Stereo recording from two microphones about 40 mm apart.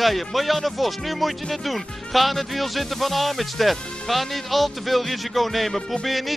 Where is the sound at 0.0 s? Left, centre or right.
Centre.